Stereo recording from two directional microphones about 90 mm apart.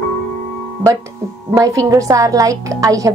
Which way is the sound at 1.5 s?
40° right (ahead or behind).